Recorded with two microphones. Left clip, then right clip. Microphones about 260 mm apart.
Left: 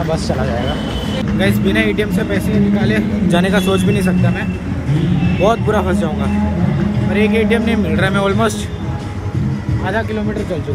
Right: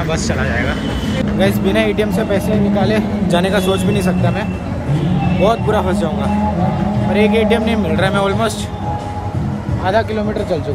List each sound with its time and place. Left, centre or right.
1.4 s a man's voice: centre
5.4 s a man's voice: centre
9.8 s a man's voice: centre